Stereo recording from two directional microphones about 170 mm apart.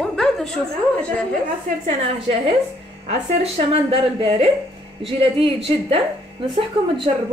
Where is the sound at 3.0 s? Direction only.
35° right (ahead or behind).